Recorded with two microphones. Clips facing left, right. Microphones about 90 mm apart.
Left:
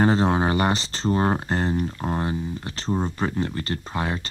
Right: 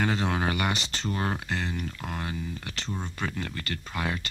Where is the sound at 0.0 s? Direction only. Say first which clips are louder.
Left 7 dB; 35° left (ahead or behind).